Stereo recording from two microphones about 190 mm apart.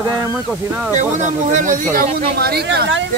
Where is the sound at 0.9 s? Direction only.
40° right (ahead or behind); by 3.0 s 65° right (ahead or behind).